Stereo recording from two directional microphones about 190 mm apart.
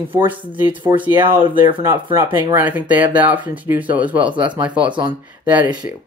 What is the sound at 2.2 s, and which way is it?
Speech, 10° right (ahead or behind).